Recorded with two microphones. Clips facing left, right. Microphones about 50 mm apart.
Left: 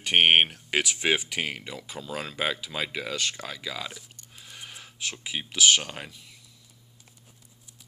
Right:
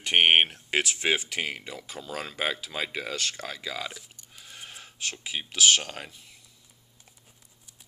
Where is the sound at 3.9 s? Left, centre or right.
Centre.